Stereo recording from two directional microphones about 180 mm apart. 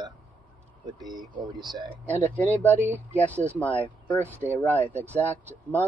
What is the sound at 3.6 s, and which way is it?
Speech, 10° left (ahead or behind).